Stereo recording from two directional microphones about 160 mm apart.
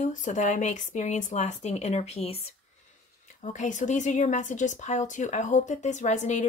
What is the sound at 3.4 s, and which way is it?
A woman's voice, 50° left (ahead or behind).